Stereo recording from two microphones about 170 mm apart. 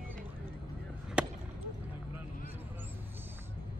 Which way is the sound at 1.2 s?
5° right (ahead or behind).